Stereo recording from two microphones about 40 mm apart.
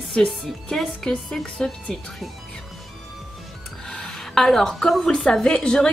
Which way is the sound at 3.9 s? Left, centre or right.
Centre.